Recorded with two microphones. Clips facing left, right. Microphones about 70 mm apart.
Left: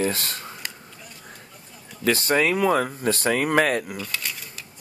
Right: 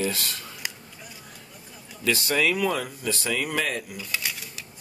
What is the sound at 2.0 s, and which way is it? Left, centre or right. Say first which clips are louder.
Speech: left 3 dB; left.